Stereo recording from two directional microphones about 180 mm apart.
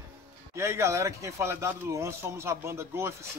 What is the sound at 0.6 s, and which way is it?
Speech, 15° right (ahead or behind).